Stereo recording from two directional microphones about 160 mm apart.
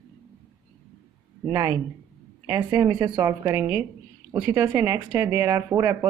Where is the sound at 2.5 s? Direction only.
15° right (ahead or behind).